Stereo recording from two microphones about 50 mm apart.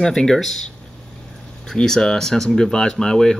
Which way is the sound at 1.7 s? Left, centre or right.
Centre.